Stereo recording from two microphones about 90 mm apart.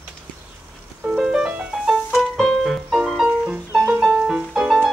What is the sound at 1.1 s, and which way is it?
Music, 5° right (ahead or behind).